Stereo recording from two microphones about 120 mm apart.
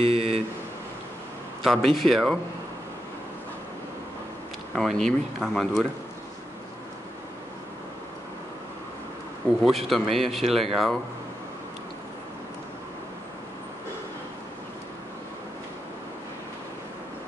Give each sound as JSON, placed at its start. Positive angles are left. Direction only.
{"t": 0.0, "sound": "a sound", "side_deg": -60}
{"t": 1.6, "sound": "a man's voice", "side_deg": 0}
{"t": 4.7, "sound": "speech", "side_deg": 5}
{"t": 9.7, "sound": "speech", "side_deg": 0}